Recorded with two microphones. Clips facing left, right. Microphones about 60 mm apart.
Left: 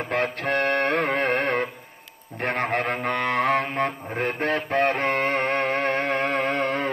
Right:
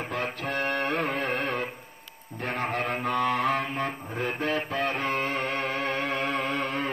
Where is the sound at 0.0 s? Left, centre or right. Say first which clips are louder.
Left 6 dB; left.